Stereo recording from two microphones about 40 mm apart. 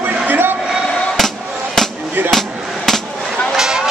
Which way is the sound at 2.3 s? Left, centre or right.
Centre.